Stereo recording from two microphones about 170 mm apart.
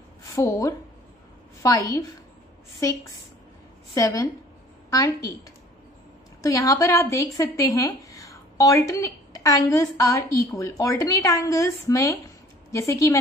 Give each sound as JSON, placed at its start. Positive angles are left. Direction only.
{"t": 0.3, "sound": "speech", "side_deg": 20}
{"t": 6.4, "sound": "a woman's voice", "side_deg": 20}